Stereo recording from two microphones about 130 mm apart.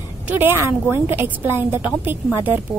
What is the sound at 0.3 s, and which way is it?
Speech, 15° right (ahead or behind).